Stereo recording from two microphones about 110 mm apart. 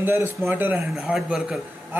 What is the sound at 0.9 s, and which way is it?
Speech, 5° right (ahead or behind).